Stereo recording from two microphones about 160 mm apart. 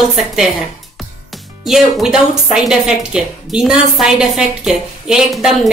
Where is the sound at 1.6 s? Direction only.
5° right (ahead or behind).